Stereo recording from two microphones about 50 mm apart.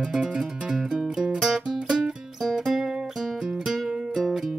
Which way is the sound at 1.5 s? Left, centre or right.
Centre.